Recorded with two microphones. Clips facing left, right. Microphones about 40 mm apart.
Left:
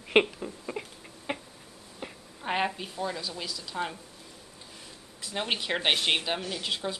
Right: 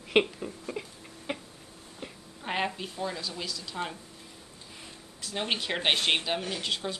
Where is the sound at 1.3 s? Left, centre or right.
Centre.